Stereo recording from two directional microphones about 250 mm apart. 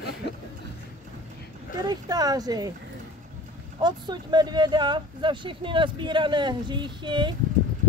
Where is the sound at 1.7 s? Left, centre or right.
Centre.